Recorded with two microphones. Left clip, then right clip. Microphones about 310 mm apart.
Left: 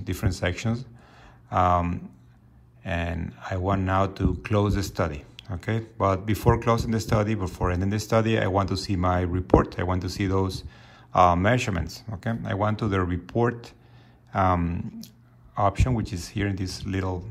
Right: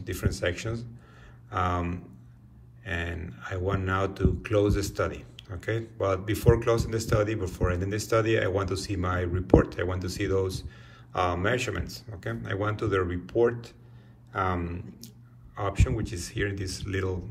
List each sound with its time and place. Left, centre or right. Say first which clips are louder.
0.0 s speech: left 1 dB; centre
14.5 s speech: left 7 dB; centre